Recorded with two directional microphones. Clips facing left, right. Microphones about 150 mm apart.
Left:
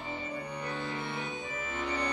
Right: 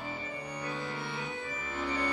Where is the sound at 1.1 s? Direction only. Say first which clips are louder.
Left 1 dB; 20° left (ahead or behind).